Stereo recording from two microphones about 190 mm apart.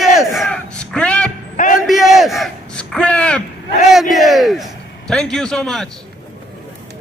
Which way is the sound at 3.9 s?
Centre (ahead or behind).